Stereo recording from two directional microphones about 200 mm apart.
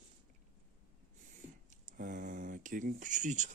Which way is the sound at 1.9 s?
40° right (ahead or behind).